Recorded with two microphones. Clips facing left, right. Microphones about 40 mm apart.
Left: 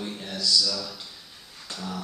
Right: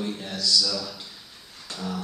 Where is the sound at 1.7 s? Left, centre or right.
Centre.